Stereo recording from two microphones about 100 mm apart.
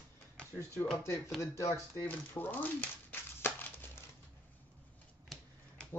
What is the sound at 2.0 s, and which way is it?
Crumpling, 20° left (ahead or behind).